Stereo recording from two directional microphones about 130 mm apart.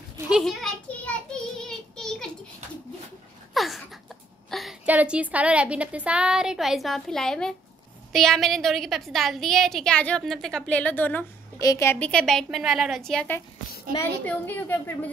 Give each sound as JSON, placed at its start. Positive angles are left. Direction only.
{"t": 0.3, "sound": "a woman's voice", "side_deg": 0}
{"t": 1.0, "sound": "child singing", "side_deg": 5}
{"t": 3.5, "sound": "a sound", "side_deg": 0}
{"t": 4.8, "sound": "a woman's voice", "side_deg": -10}
{"t": 11.5, "sound": "a woman's voice", "side_deg": 25}
{"t": 12.0, "sound": "a woman's voice", "side_deg": 5}